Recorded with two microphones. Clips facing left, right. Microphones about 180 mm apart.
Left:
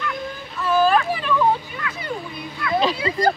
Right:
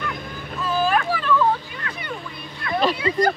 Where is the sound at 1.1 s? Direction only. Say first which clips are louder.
Even; 15° left (ahead or behind).